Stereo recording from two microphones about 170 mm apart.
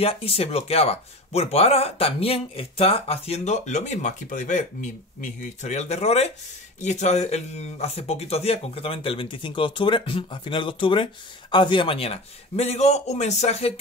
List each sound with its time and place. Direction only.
0.0 s speech: 35° left (ahead or behind)